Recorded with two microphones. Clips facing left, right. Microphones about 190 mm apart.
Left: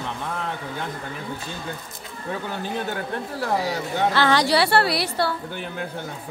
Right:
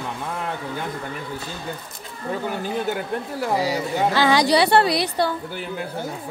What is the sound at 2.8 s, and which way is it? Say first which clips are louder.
Speech: right 3 dB; 10° right (ahead or behind).